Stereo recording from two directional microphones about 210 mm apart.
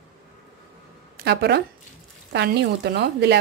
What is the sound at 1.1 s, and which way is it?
A woman's voice, 50° right (ahead or behind).